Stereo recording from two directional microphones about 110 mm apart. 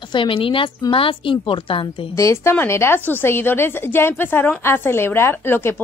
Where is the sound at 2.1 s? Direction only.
25° left (ahead or behind).